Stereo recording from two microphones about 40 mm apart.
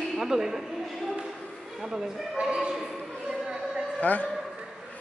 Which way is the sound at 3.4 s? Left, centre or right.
Right.